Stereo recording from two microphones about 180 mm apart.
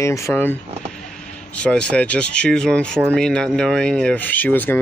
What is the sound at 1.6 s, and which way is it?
Speech, 5° left (ahead or behind).